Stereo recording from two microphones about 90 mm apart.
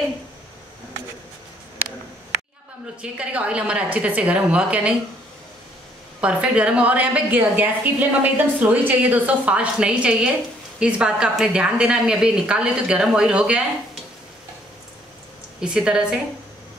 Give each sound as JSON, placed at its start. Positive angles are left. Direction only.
{"t": 3.0, "sound": "a woman's voice", "side_deg": -15}
{"t": 6.2, "sound": "a woman's voice", "side_deg": -10}
{"t": 15.6, "sound": "a woman's voice", "side_deg": -10}